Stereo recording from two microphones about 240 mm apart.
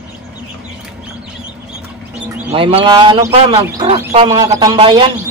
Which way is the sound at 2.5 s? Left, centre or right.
Right.